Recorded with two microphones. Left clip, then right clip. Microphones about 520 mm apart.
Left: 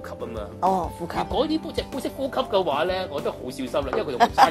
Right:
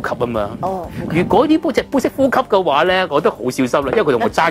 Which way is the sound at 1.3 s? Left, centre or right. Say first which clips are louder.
Right 13 dB; right.